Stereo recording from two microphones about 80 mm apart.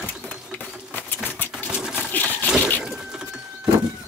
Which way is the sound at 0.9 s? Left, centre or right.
Left.